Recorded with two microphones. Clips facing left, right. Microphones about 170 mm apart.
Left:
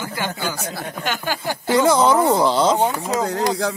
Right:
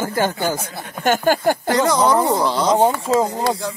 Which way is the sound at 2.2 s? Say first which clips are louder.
Left 2 dB; 25° left (ahead or behind).